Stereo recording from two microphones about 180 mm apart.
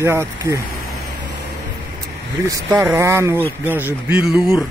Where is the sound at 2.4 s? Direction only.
20° right (ahead or behind).